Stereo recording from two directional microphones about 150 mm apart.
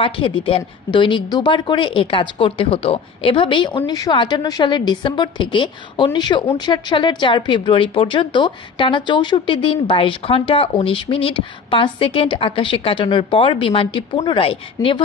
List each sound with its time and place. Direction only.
0.0 s a woman's voice: 35° left (ahead or behind)